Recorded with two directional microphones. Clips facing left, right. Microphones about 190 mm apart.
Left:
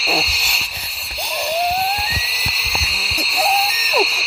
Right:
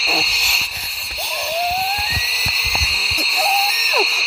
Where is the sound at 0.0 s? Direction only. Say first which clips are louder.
Left 2 dB; centre (ahead or behind).